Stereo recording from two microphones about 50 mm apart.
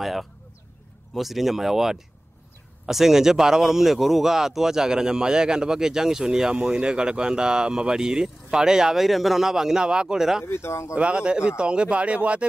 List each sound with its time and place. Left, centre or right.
0.0 s speech: centre
10.4 s speech: left
11.0 s speech: right